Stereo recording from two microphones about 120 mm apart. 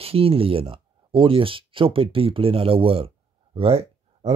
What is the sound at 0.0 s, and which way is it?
Speech, 55° right (ahead or behind).